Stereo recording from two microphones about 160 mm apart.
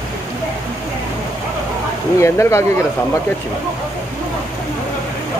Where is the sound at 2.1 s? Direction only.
20° left (ahead or behind).